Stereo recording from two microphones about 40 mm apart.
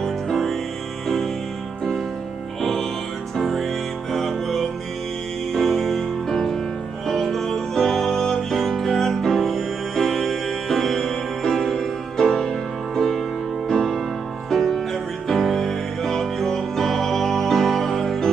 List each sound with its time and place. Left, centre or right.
0.0 s music: centre
2.6 s music: centre